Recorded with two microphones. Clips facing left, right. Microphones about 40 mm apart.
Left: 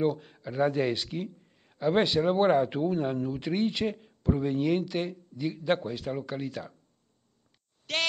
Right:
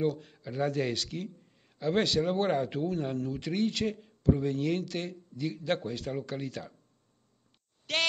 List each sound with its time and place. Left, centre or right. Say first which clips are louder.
0.0 s a man's voice: left 3 dB; centre
7.9 s speech: even; centre